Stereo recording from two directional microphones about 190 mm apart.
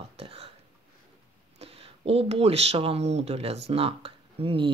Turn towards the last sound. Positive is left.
turn(degrees=-30)  # may be behind; listen again after turning